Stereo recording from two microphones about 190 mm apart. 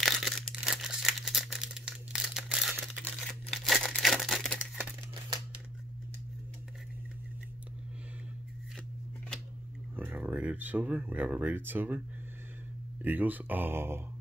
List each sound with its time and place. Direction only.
0.0 s crumpling: centre (ahead or behind)
3.3 s tearing: centre (ahead or behind)
9.9 s speech: 10° right (ahead or behind)
13.0 s speech: 10° right (ahead or behind)